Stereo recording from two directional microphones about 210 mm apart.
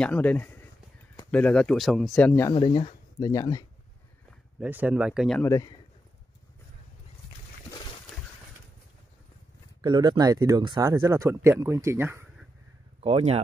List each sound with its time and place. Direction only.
0.0 s speech: 5° left (ahead or behind)
2.5 s speech: 25° left (ahead or behind)
4.3 s speech: 5° right (ahead or behind)
5.4 s speech: 15° left (ahead or behind)
9.8 s speech: 20° right (ahead or behind)
13.0 s speech: 30° right (ahead or behind)